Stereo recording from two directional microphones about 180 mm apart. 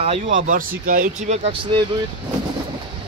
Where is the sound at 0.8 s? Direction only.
50° right (ahead or behind); by 1.9 s 30° right (ahead or behind).